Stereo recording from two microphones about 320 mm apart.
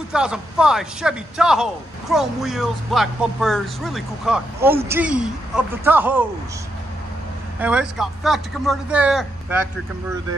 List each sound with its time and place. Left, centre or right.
0.1 s a man's voice: centre
7.6 s a man's voice: centre